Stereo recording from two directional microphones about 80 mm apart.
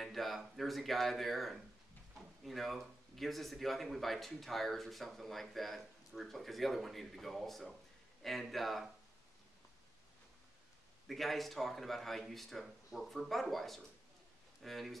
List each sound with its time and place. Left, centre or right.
0.0 s speech: centre
11.1 s speech: centre